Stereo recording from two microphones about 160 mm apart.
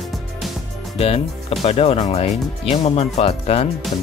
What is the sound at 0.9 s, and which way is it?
Speech, 40° left (ahead or behind).